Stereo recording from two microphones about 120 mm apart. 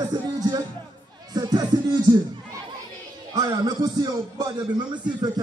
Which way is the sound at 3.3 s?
35° right (ahead or behind).